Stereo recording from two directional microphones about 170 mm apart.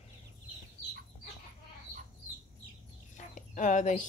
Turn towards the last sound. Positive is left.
turn(degrees=45)  # may be behind; listen again after turning